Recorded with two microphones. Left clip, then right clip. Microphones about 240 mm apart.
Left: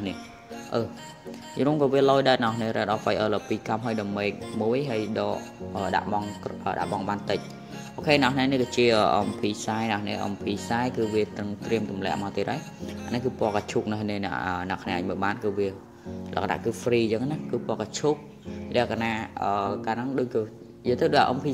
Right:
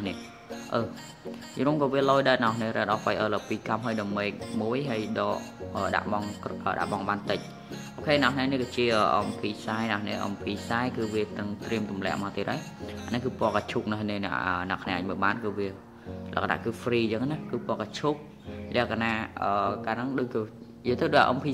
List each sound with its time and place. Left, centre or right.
0.7 s speech: centre
8.0 s speech: centre